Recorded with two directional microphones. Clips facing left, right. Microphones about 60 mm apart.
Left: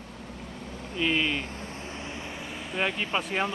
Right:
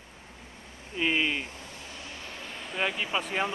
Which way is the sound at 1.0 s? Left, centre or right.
Centre.